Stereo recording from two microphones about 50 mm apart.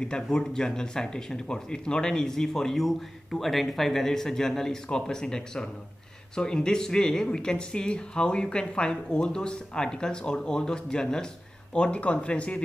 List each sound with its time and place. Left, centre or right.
0.1 s speech: centre